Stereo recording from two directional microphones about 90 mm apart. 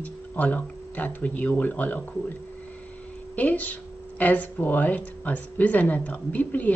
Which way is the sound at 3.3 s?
15° left (ahead or behind).